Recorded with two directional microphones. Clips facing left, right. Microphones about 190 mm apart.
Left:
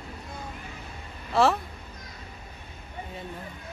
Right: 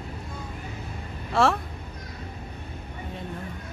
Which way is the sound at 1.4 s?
Centre (ahead or behind).